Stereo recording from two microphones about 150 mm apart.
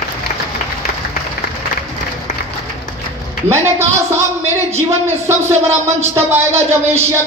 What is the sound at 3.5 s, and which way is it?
Speech, 15° right (ahead or behind).